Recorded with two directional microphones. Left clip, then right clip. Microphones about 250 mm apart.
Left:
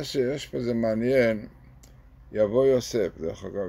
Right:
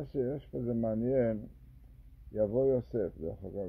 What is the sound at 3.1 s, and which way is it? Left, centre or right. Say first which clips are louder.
Speech: left 8 dB; left.